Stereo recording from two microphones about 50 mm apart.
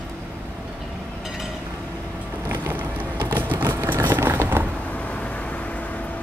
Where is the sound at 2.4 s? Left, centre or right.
Right.